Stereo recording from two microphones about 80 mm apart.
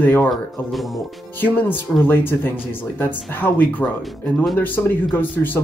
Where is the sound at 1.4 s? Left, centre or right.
Left.